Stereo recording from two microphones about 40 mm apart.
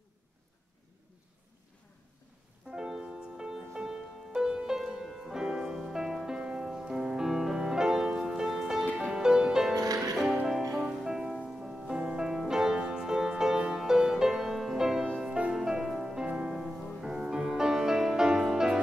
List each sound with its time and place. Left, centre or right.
2.7 s music: centre
8.9 s music: centre
16.5 s music: centre